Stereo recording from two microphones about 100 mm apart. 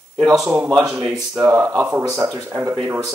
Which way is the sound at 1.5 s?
35° right (ahead or behind).